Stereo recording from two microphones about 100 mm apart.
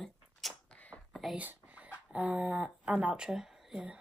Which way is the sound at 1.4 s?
15° right (ahead or behind).